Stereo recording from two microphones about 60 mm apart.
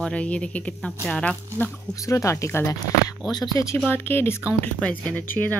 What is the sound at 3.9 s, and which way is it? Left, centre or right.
Speech, left.